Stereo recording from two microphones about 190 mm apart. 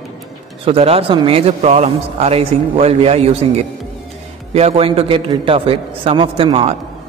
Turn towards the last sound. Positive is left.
turn(degrees=-30)  # may be behind; listen again after turning